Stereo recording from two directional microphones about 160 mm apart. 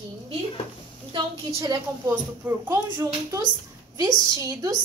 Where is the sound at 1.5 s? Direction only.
20° right (ahead or behind).